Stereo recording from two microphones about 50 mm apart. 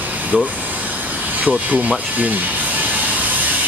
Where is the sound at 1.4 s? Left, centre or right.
Right.